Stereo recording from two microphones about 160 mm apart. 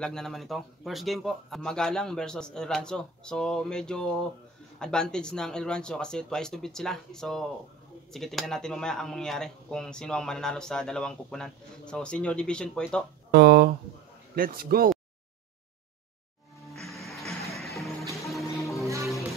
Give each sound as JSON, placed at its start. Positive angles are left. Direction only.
{"t": 0.0, "sound": "speech", "side_deg": 5}
{"t": 13.3, "sound": "speech", "side_deg": -90}
{"t": 14.3, "sound": "speech", "side_deg": -65}
{"t": 16.7, "sound": "music", "side_deg": 0}